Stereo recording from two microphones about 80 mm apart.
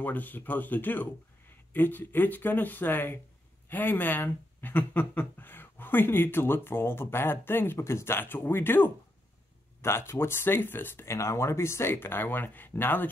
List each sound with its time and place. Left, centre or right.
0.0 s speech: left